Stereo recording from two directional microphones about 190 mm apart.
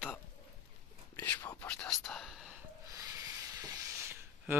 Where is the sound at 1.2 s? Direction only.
10° left (ahead or behind).